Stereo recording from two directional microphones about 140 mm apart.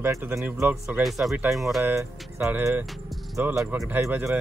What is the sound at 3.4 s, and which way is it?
Speech, 10° right (ahead or behind).